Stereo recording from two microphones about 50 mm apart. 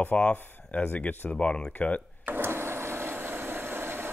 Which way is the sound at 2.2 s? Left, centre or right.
Right.